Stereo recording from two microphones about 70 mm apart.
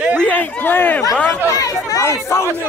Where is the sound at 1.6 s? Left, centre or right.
Left.